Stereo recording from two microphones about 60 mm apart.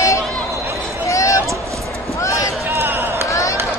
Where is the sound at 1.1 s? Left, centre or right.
Left.